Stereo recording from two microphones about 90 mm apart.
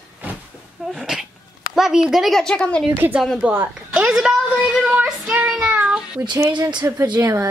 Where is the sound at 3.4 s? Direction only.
15° right (ahead or behind).